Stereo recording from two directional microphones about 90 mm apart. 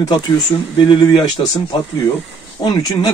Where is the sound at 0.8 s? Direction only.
65° left (ahead or behind).